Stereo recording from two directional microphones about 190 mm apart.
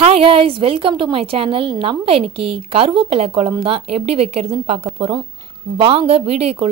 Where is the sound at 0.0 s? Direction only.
30° right (ahead or behind).